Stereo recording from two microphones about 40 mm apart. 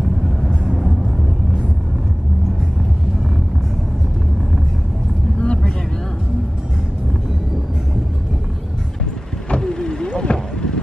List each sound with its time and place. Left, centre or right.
0.4 s vehicle: centre
5.4 s vehicle: left
9.6 s vehicle: centre